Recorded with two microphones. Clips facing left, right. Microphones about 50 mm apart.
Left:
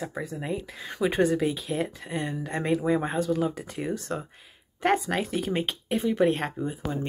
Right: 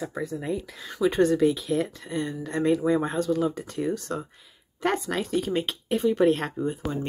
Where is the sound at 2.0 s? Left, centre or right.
Left.